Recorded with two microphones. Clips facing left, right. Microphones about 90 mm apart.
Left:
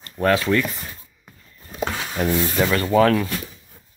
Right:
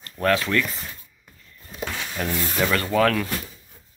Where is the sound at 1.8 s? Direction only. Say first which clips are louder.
Left 5 dB; 40° left (ahead or behind).